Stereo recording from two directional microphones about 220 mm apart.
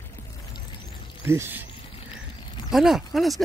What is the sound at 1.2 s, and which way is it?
Speech, 10° right (ahead or behind).